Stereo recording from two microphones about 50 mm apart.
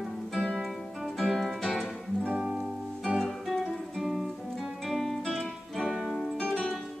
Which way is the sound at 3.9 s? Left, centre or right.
Centre.